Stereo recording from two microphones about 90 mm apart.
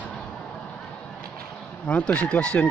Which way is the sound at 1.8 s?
10° left (ahead or behind).